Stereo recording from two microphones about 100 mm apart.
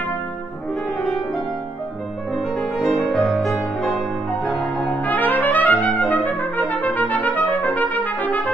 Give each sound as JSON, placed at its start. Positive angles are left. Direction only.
{"t": 2.8, "sound": "music", "side_deg": 0}
{"t": 4.5, "sound": "music", "side_deg": 15}